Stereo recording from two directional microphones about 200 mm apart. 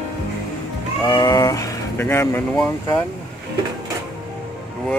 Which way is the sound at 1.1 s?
20° left (ahead or behind).